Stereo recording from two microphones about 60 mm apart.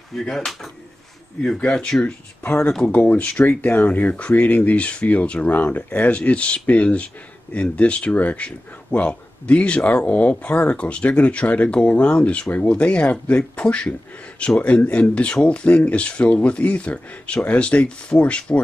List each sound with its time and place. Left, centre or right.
0.1 s speech: centre
1.6 s speech: centre
2.4 s speech: left